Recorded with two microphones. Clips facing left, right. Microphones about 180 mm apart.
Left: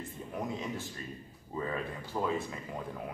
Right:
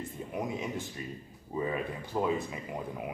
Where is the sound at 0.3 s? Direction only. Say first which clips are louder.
Right 2 dB; 15° right (ahead or behind).